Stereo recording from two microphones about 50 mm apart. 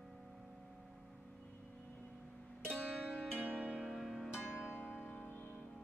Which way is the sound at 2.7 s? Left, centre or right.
Right.